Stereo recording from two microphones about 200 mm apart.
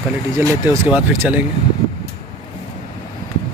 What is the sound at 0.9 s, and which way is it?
Speech, 10° right (ahead or behind).